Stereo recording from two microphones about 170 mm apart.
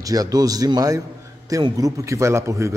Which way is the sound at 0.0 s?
20° right (ahead or behind).